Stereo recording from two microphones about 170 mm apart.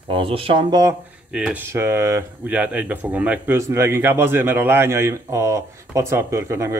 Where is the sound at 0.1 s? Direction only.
30° right (ahead or behind).